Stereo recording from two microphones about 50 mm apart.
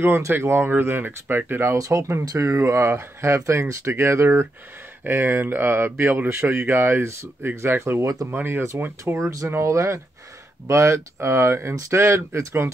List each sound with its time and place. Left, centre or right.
0.3 s speech: right
1.8 s speech: right
5.0 s speech: right
7.8 s speech: right
8.3 s speech: right
9.1 s speech: right